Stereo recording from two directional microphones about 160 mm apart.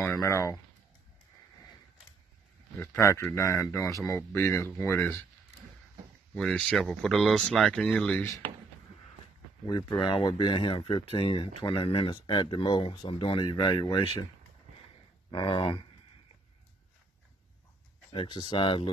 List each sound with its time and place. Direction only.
0.0 s speech: 15° left (ahead or behind)
2.8 s speech: 15° left (ahead or behind)
6.3 s speech: 5° left (ahead or behind)
9.7 s speech: 25° left (ahead or behind)
15.3 s speech: 35° left (ahead or behind)
18.1 s speech: 30° left (ahead or behind)